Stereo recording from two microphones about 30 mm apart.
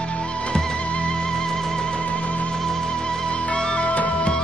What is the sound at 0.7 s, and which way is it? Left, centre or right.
Music, left.